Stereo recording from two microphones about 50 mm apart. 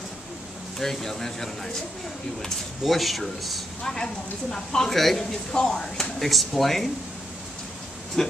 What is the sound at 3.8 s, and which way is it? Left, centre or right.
Speech, centre.